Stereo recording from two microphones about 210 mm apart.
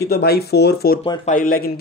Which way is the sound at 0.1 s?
50° left (ahead or behind).